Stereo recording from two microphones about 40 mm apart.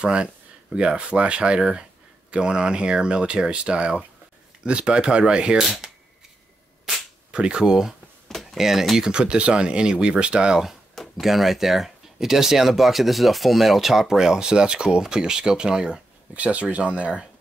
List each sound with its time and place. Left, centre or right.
0.0 s speech: right
7.2 s speech: right
8.3 s a sound: centre
8.5 s speech: centre
8.9 s speech: centre
11.1 s speech: centre
16.3 s speech: right